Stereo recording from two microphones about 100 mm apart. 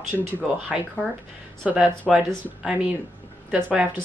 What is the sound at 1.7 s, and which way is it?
Speech, 10° right (ahead or behind).